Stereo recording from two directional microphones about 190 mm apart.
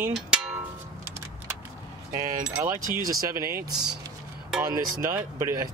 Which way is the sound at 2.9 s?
15° right (ahead or behind).